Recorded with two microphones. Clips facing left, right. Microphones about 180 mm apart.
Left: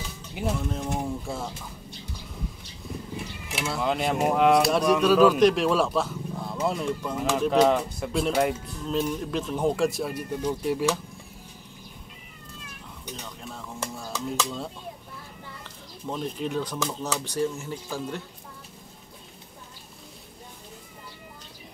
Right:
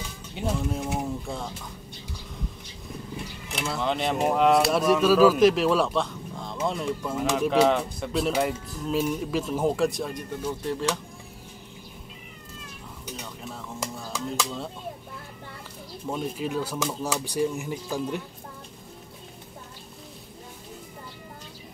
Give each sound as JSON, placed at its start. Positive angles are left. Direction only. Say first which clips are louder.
{"t": 0.6, "sound": "speech", "louder": "right 1 dB", "side_deg": -10}
{"t": 3.5, "sound": "speech", "louder": "left 1 dB", "side_deg": 5}
{"t": 13.1, "sound": "a sound", "louder": "right 1 dB", "side_deg": -5}
{"t": 14.1, "sound": "speech", "louder": "left 1 dB", "side_deg": -10}
{"t": 16.1, "sound": "speech", "louder": "right 1 dB", "side_deg": -5}